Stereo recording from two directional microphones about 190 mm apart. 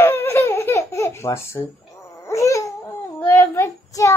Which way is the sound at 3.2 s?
10° left (ahead or behind).